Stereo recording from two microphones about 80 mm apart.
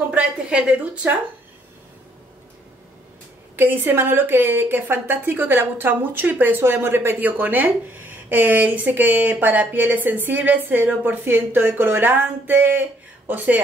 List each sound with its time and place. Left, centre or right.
0.1 s a woman's voice: centre
3.5 s speech: right